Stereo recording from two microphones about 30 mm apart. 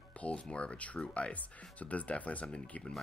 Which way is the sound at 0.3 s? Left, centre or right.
Left.